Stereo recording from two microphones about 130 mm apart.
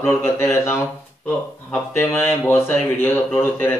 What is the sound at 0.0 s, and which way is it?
Speech, 20° left (ahead or behind).